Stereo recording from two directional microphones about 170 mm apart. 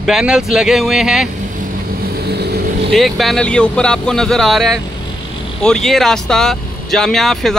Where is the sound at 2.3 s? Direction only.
75° right (ahead or behind).